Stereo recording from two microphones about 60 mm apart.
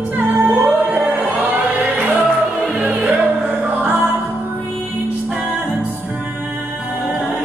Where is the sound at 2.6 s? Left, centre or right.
Centre.